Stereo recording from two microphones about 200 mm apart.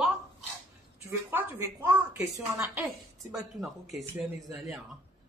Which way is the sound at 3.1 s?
Centre (ahead or behind).